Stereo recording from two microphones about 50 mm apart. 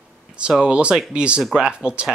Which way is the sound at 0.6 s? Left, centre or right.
Right.